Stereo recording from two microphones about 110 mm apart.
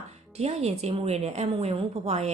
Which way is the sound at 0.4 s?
80° right.